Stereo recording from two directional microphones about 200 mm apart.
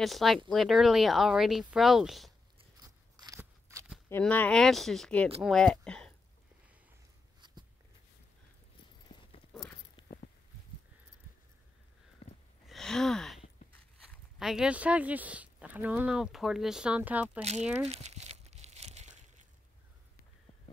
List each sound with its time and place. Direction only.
0.0 s speech: centre (ahead or behind)
2.8 s scissors: 20° right (ahead or behind)
4.1 s speech: 10° left (ahead or behind)
7.4 s a sound: 20° right (ahead or behind)
9.1 s clip-clop: 20° left (ahead or behind)
10.0 s walk: 25° left (ahead or behind)
12.2 s a sound: 30° left (ahead or behind)
12.6 s gasp: centre (ahead or behind)
14.1 s speech: centre (ahead or behind)
17.8 s crumpling: 30° right (ahead or behind)